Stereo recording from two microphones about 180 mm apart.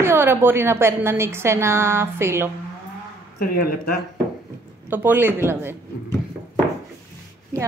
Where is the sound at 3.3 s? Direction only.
55° left (ahead or behind).